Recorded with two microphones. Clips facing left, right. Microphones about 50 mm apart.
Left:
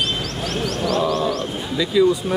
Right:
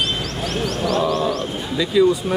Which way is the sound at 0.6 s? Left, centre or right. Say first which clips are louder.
Right 1 dB; centre.